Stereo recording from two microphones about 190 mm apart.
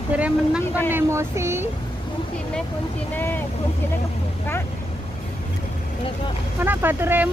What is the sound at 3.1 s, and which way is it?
Vehicle, 10° left (ahead or behind).